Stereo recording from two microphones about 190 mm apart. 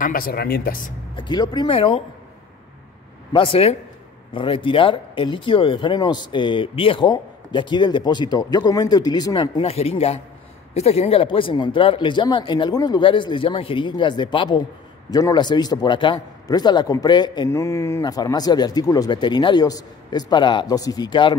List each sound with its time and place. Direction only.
0.0 s speech: 50° left (ahead or behind)
1.1 s a man's voice: 25° left (ahead or behind)
3.3 s a man's voice: 30° left (ahead or behind)